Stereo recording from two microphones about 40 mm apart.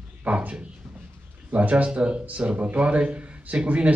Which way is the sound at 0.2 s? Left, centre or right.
Right.